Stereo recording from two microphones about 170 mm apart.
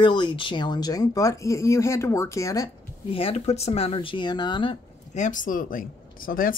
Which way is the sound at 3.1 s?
35° left (ahead or behind).